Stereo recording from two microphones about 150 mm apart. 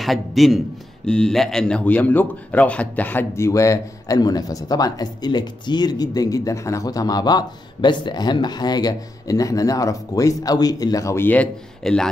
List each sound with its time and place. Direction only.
0.0 s a man's voice: centre (ahead or behind)